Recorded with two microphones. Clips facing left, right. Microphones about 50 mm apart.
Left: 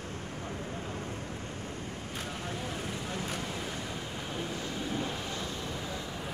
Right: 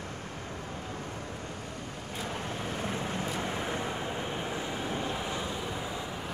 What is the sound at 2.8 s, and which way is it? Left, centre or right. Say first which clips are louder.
Vehicle: right 3 dB; right.